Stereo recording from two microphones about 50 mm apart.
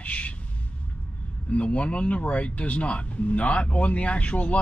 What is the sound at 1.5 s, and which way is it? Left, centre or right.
Speech, left.